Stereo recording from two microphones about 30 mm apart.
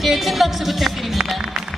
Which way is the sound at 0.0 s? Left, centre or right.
Centre.